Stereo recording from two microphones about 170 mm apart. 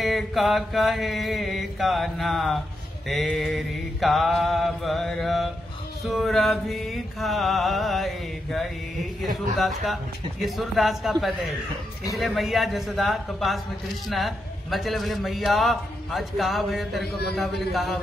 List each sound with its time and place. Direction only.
0.0 s music: centre (ahead or behind)